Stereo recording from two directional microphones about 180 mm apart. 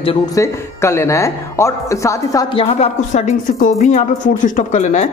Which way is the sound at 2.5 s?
35° left (ahead or behind).